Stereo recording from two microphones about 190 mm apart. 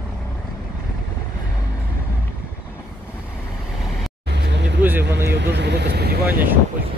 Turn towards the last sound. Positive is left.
turn(degrees=-10)  # may be behind; listen again after turning